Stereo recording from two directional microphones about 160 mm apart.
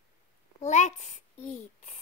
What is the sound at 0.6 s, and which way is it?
Speech, 50° left (ahead or behind).